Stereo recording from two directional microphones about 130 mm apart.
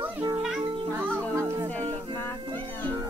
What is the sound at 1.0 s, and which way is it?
Music, 20° right (ahead or behind).